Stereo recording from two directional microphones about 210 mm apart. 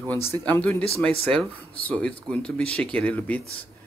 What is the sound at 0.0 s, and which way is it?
Speech, 10° left (ahead or behind).